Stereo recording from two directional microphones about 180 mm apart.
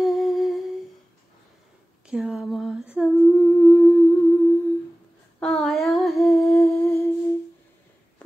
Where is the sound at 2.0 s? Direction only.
5° right (ahead or behind).